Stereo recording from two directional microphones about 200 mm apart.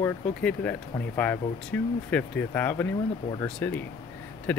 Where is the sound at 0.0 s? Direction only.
5° left (ahead or behind).